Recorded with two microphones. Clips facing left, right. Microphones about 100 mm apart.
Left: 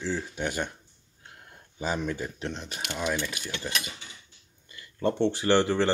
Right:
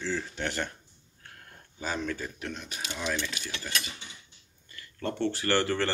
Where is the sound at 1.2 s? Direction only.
20° left (ahead or behind).